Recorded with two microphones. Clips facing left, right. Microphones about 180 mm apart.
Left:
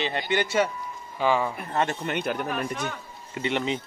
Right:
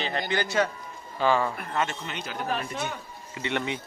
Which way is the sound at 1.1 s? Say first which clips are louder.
Even; 15° left (ahead or behind).